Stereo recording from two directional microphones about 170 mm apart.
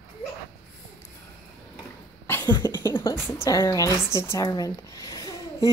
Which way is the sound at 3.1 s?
25° left (ahead or behind).